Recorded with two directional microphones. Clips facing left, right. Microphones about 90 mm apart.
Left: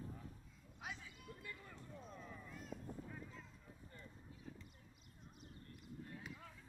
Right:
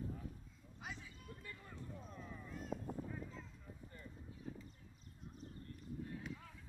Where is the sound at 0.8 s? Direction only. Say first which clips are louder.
Even; centre (ahead or behind).